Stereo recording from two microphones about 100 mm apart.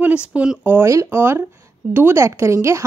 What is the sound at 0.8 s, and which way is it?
A woman's voice, 30° right (ahead or behind).